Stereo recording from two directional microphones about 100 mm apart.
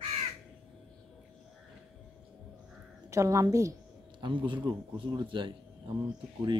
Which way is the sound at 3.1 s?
35° right (ahead or behind).